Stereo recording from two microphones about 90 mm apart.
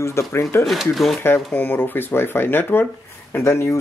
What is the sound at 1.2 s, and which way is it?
Speech, 20° left (ahead or behind).